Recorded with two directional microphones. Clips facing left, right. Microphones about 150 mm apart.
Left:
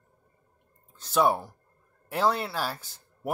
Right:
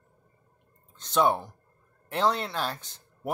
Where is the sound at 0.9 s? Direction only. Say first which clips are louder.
Even; 5° left (ahead or behind).